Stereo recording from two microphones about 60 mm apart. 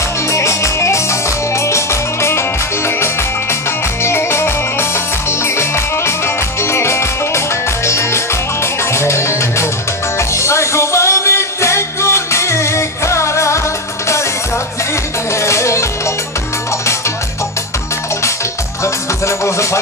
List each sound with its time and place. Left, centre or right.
0.3 s music: left
4.0 s music: left
15.4 s music: left
19.2 s music: left